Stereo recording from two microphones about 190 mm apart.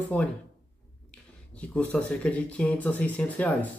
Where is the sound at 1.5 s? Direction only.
5° left (ahead or behind).